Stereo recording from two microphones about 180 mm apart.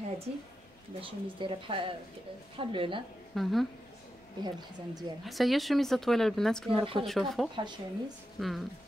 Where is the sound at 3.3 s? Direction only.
Centre (ahead or behind).